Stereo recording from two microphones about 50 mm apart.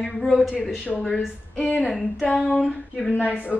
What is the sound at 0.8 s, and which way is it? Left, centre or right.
Speech, left.